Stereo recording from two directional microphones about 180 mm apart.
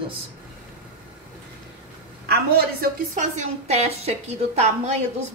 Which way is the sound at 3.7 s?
35° right (ahead or behind).